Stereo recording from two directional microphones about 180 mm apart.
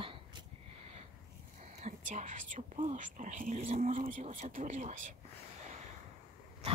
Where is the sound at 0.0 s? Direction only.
30° right (ahead or behind).